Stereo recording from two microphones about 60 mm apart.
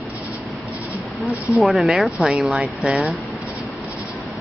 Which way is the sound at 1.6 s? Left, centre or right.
Centre.